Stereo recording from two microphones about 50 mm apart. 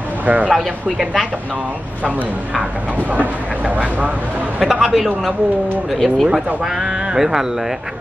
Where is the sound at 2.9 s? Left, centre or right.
Right.